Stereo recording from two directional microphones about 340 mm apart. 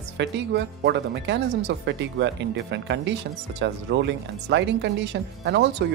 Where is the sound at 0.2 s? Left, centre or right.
Right.